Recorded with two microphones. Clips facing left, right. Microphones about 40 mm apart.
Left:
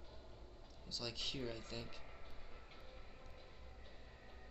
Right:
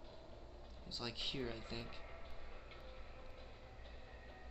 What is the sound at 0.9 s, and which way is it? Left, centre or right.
Speech, centre.